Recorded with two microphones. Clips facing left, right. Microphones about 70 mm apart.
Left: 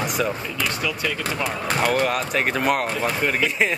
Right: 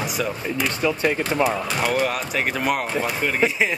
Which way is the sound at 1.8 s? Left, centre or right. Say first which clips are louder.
Left 2 dB; centre.